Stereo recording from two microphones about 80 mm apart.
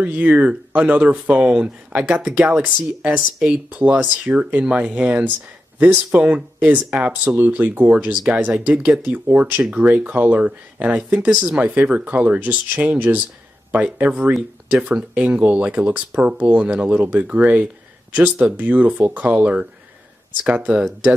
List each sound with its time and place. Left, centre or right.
0.0 s speech: right